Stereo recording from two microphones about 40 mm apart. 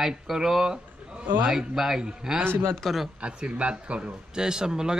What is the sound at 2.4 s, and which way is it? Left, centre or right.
Speech, right.